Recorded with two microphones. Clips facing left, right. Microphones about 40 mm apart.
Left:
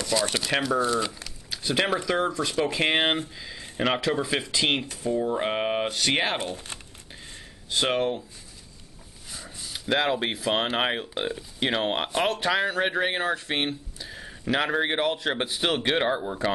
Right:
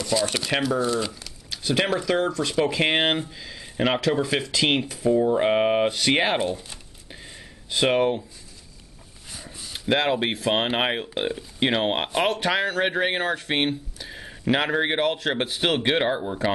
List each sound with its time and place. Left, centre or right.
0.0 s speech: centre
7.7 s speech: centre
8.0 s speech: centre
9.3 s a sound: centre
9.7 s speech: centre